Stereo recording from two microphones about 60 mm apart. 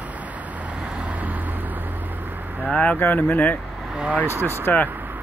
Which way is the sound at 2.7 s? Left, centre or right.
Left.